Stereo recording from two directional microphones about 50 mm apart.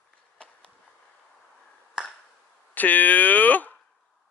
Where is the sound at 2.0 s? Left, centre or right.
Centre.